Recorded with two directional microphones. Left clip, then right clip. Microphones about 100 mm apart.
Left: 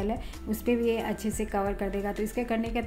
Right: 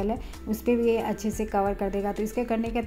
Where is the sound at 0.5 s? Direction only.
20° right (ahead or behind).